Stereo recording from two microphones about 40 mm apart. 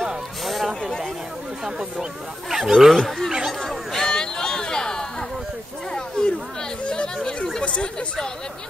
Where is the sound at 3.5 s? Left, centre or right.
Centre.